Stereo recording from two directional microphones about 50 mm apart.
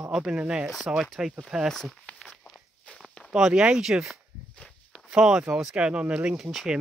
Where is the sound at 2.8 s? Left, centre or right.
Centre.